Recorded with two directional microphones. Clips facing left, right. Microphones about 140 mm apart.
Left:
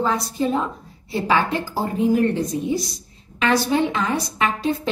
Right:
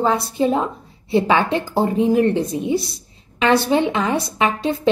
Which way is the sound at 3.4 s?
25° right (ahead or behind).